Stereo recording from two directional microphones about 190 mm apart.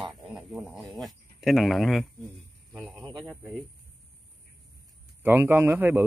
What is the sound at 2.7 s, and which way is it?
Snake, centre (ahead or behind).